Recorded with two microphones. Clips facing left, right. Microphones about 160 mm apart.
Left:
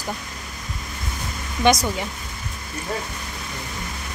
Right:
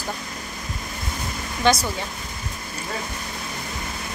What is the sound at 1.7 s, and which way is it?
Speech, 20° left (ahead or behind).